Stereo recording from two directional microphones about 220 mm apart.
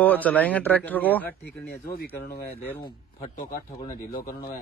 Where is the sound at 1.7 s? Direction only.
45° left (ahead or behind).